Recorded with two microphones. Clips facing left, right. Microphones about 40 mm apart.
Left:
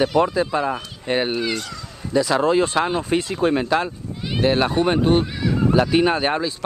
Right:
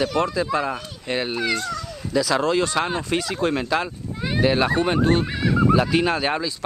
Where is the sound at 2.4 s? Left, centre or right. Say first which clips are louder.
Left 3 dB; left.